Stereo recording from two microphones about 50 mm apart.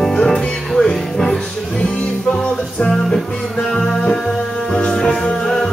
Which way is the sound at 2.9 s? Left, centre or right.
Centre.